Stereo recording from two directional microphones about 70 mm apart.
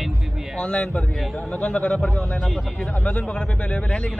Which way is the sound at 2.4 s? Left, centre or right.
Centre.